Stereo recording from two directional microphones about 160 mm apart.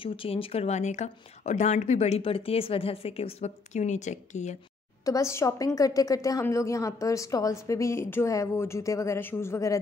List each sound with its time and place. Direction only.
0.0 s speech: 35° left (ahead or behind)
5.0 s a woman's voice: 20° left (ahead or behind)